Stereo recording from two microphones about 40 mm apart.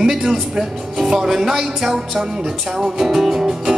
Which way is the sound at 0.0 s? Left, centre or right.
Centre.